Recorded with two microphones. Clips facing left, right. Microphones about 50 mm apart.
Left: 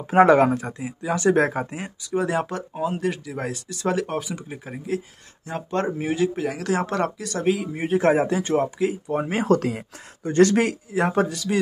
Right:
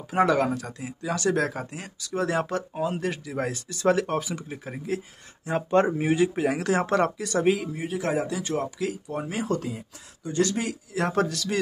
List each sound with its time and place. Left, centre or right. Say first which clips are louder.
0.1 s speech: left 7 dB; left; by 1.3 s centre
1.3 s speech: left 6 dB; left
2.0 s speech: left 2 dB; centre
7.7 s speech: left 7 dB; left
9.4 s speech: left 9 dB; left
10.9 s a man's voice: left 3 dB; centre